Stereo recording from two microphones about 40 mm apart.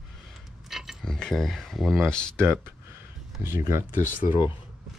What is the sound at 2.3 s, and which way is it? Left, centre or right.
Speech, right.